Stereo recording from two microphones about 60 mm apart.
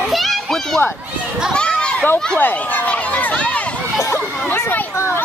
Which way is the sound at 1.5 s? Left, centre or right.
Centre.